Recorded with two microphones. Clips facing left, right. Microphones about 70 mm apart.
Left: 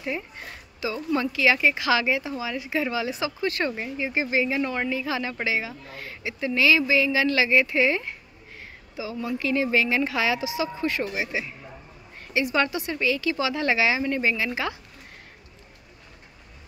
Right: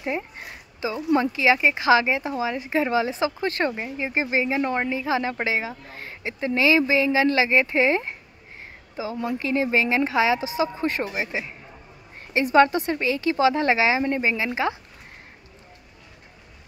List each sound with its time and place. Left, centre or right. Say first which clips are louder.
0.0 s speech: right 3 dB; right
9.4 s speech: even; right